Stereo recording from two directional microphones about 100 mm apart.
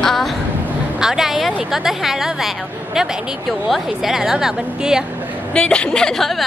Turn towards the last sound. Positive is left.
turn(degrees=0)  # may be behind; listen again after turning